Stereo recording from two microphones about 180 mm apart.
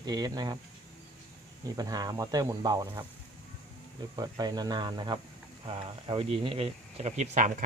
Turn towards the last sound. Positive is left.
turn(degrees=-45)  # may be behind; listen again after turning